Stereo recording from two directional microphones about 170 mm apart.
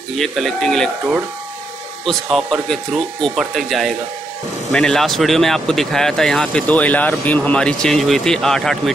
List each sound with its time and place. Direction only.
0.2 s speech: centre (ahead or behind)
2.0 s speech: centre (ahead or behind)